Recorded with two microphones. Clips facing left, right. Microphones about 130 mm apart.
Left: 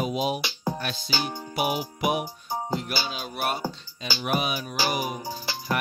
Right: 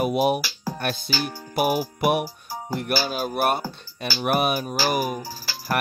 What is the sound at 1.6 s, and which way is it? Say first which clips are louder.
Music: right 5 dB; 55° right (ahead or behind).